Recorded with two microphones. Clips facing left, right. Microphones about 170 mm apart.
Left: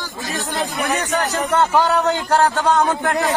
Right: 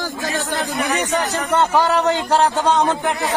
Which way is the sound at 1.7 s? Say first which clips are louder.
Even; centre (ahead or behind).